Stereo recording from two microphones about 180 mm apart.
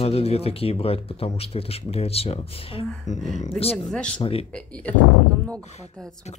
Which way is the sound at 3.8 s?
5° left (ahead or behind).